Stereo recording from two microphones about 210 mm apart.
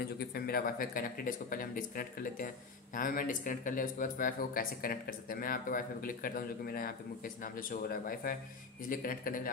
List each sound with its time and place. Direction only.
0.0 s speech: 45° left (ahead or behind)